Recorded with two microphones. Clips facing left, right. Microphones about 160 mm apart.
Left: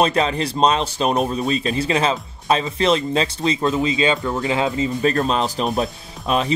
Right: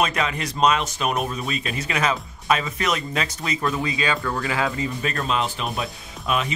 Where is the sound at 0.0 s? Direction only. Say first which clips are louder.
Left 5 dB; 30° left (ahead or behind).